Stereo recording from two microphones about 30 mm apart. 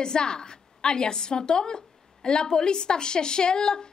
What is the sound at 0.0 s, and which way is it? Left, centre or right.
A woman's voice, left.